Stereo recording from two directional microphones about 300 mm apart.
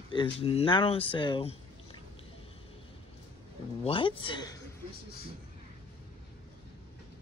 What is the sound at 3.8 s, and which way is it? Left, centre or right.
Speech, centre.